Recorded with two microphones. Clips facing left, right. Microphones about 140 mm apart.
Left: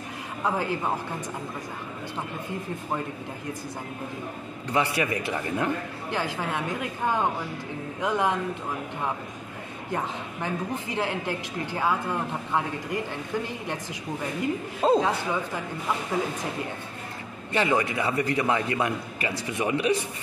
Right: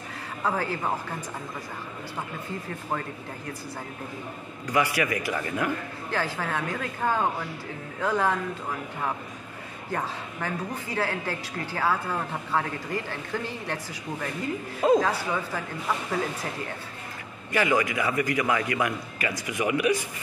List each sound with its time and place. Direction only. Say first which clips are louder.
0.4 s a man's voice: left 1 dB; 15° left (ahead or behind)
4.6 s a woman's voice: even; 30° left (ahead or behind)
9.9 s a woman's voice: left 1 dB; 20° left (ahead or behind)
14.8 s a woman's voice: right 1 dB; 20° left (ahead or behind)
17.5 s a woman's voice: even; 30° left (ahead or behind)